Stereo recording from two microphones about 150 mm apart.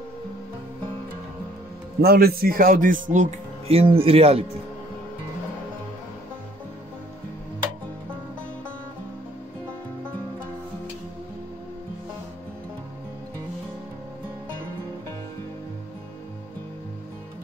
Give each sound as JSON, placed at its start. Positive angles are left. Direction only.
{"t": 2.0, "sound": "a man's voice", "side_deg": -85}